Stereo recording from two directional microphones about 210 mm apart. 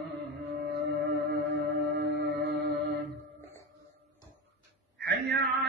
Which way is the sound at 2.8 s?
50° right (ahead or behind).